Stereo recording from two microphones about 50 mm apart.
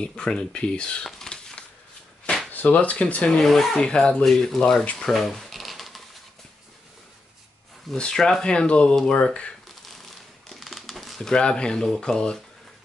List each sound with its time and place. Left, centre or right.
0.0 s speech: centre
1.0 s a sound: centre
2.5 s speech: left
3.3 s speech: centre
3.8 s speech: centre
4.9 s a sound: centre
7.9 s speech: centre
10.5 s a sound: centre
11.1 s speech: centre